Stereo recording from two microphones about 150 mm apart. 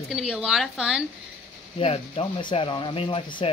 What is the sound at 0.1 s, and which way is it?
Speech, centre (ahead or behind).